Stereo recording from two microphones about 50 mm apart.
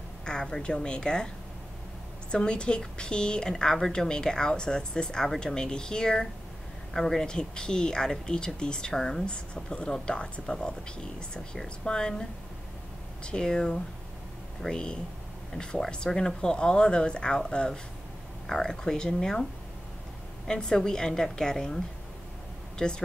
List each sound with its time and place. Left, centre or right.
0.2 s a woman's voice: centre
2.3 s a woman's voice: centre
20.4 s a woman's voice: centre